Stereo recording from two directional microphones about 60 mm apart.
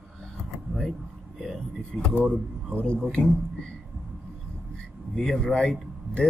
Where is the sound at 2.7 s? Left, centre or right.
Left.